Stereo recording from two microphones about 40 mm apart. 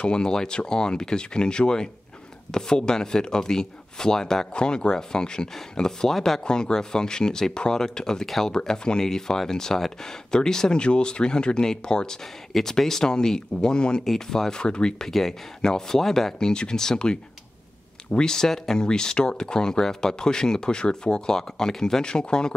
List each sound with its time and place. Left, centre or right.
0.0 s speech: left
6.4 s speech: centre
14.0 s speech: centre
15.0 s speech: centre
16.3 s speech: centre